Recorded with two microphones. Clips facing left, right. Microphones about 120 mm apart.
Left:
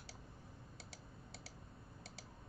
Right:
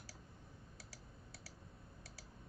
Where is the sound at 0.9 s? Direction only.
25° left (ahead or behind).